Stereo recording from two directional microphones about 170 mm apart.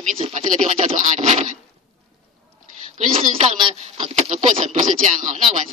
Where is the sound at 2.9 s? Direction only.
40° right (ahead or behind).